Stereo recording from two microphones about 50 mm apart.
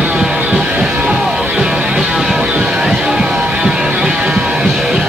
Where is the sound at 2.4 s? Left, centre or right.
Right.